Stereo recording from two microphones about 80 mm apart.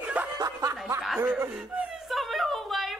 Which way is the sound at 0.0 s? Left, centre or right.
Centre.